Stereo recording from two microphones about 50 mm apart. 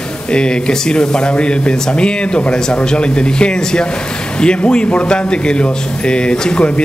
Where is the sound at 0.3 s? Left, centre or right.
Centre.